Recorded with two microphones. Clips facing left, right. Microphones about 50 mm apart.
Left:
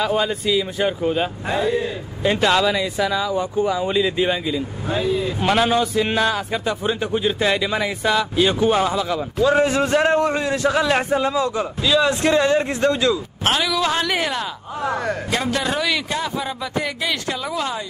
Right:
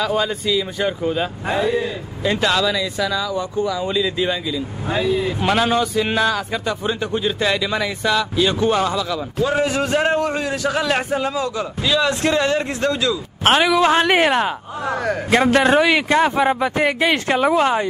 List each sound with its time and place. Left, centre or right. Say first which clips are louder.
0.0 s speech: even; centre
1.5 s speech: right 1 dB; right
2.4 s speech: left 1 dB; centre
4.9 s speech: right 2 dB; right
5.4 s speech: left 1 dB; centre
9.6 s a man's voice: left 1 dB; left
11.9 s speech: left 1 dB; centre
13.4 s speech: right 9 dB; right
16.2 s speech: right 9 dB; right